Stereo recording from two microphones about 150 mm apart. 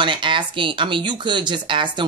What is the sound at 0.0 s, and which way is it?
A woman's voice, 35° right (ahead or behind).